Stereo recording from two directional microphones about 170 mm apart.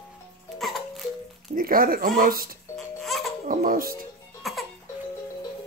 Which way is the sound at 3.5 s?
55° right (ahead or behind).